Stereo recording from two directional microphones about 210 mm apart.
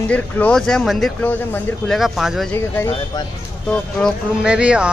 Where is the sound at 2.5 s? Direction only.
15° left (ahead or behind).